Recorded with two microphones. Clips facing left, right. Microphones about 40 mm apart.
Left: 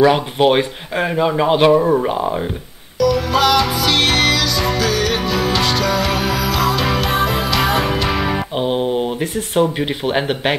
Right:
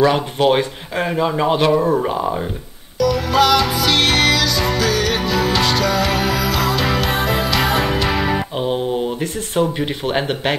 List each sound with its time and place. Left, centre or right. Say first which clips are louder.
0.0 s speech: left 2 dB; centre
1.8 s speech: left 2 dB; centre
3.0 s music: even; centre
8.5 s speech: left 2 dB; left
10.0 s speech: left 2 dB; centre